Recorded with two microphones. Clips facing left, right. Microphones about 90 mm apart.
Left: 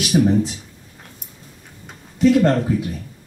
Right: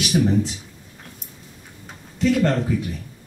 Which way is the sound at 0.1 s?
15° left (ahead or behind).